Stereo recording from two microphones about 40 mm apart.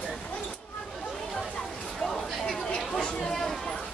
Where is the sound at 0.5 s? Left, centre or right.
Centre.